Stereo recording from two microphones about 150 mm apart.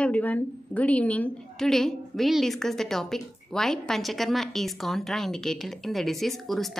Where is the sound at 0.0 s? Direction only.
10° left (ahead or behind).